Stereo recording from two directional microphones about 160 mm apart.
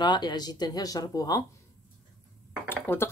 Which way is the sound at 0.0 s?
25° left (ahead or behind).